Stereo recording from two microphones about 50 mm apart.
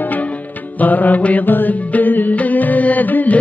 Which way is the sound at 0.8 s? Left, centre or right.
Left.